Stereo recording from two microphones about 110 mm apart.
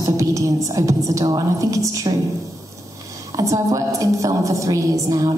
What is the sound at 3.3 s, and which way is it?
A woman's voice, 30° right (ahead or behind).